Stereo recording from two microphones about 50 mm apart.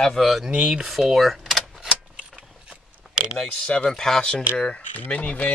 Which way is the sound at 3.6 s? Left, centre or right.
Left.